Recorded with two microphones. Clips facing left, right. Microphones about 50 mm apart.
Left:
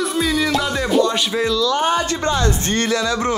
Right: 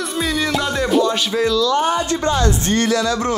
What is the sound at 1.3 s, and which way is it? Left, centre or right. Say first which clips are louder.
Speech: right 2 dB; left.